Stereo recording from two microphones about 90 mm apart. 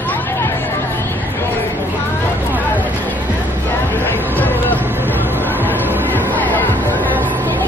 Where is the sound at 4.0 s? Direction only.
25° right (ahead or behind).